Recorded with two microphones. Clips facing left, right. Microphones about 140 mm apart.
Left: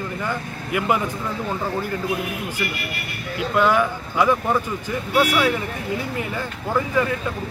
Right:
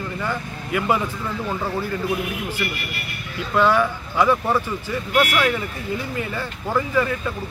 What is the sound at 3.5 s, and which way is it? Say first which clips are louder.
Speech: right 1 dB; 15° left (ahead or behind).